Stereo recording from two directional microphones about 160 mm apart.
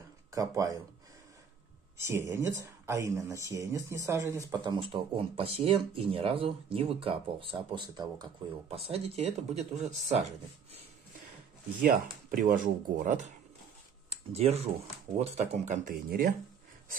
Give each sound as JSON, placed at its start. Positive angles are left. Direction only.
{"t": 0.3, "sound": "speech", "side_deg": -20}
{"t": 2.0, "sound": "speech", "side_deg": -15}
{"t": 4.5, "sound": "speech", "side_deg": -30}
{"t": 11.9, "sound": "speech", "side_deg": -60}
{"t": 14.0, "sound": "speech", "side_deg": -40}